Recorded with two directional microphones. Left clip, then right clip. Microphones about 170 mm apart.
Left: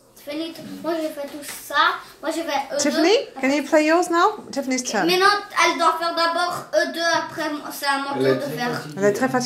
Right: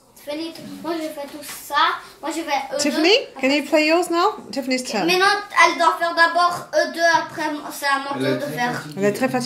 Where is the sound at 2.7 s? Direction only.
50° left (ahead or behind).